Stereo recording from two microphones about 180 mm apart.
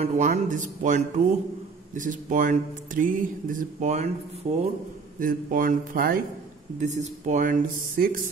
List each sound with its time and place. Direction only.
0.0 s speech: 45° right (ahead or behind)
5.2 s speech: 50° right (ahead or behind)
6.8 s speech: 40° right (ahead or behind)